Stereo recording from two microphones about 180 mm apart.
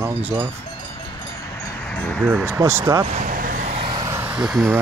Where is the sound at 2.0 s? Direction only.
5° left (ahead or behind).